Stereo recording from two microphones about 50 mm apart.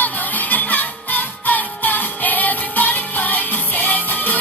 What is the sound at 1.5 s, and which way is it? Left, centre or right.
Music, left.